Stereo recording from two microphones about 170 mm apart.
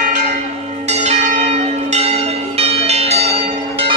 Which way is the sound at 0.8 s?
40° right (ahead or behind).